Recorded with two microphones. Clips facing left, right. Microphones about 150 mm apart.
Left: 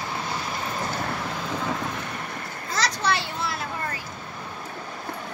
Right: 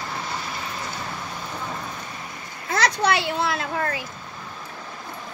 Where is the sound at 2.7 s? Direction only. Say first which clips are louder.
Right 4 dB; 60° right (ahead or behind); by 4.0 s 75° right (ahead or behind).